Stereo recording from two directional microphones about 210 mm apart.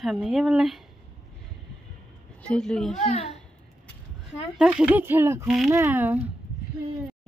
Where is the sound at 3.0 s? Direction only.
30° left (ahead or behind).